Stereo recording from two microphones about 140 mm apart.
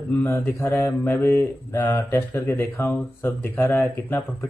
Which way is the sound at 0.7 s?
20° left (ahead or behind).